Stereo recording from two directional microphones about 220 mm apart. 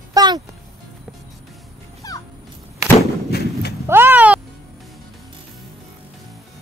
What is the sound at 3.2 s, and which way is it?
Horse, 45° left (ahead or behind).